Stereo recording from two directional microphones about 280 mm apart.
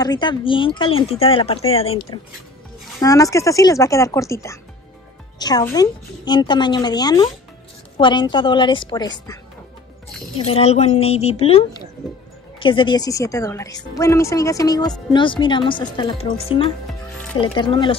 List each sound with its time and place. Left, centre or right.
0.0 s a woman's voice: centre